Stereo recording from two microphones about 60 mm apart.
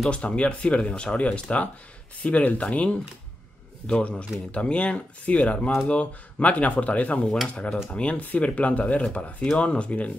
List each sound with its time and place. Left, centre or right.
0.1 s speech: centre